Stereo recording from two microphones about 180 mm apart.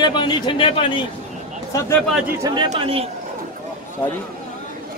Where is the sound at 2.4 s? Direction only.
25° right (ahead or behind).